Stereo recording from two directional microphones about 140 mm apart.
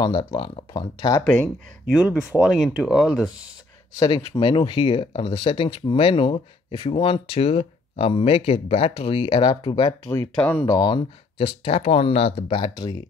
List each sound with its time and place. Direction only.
0.0 s speech: 30° left (ahead or behind)
1.2 s speech: 10° left (ahead or behind)
1.9 s speech: 10° right (ahead or behind)
4.0 s speech: 35° left (ahead or behind)
10.3 s speech: 10° left (ahead or behind)
10.7 s speech: 30° left (ahead or behind)